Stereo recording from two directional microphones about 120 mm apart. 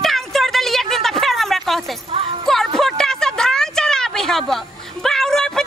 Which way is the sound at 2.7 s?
5° left (ahead or behind).